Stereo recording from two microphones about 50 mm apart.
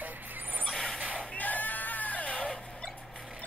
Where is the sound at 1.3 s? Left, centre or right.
Left.